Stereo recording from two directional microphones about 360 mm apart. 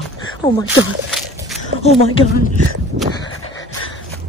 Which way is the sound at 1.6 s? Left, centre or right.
Centre.